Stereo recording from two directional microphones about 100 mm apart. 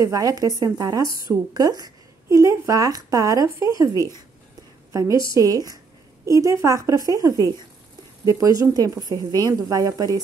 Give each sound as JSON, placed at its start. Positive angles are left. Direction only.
{"t": 0.0, "sound": "a woman's voice", "side_deg": -35}
{"t": 2.2, "sound": "a woman's voice", "side_deg": -30}
{"t": 4.9, "sound": "a woman's voice", "side_deg": -30}